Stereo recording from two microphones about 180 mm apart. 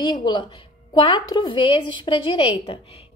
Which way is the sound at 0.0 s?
25° left (ahead or behind).